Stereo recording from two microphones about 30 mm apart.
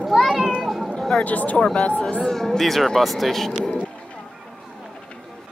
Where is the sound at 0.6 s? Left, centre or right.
Centre.